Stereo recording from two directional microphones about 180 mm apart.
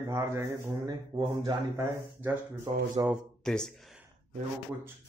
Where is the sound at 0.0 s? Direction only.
15° right (ahead or behind).